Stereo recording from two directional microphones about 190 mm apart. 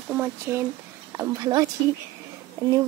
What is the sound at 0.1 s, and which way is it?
Speech, 10° right (ahead or behind).